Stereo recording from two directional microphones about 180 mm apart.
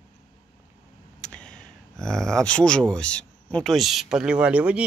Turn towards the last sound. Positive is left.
turn(degrees=-5)  # may be behind; listen again after turning